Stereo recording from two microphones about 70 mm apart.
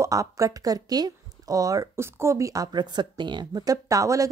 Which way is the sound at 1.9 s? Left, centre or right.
Right.